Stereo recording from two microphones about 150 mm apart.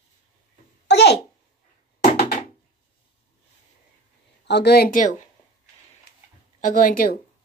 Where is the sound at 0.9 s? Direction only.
90° left.